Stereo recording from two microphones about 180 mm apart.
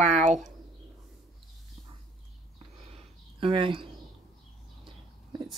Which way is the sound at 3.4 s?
30° right (ahead or behind).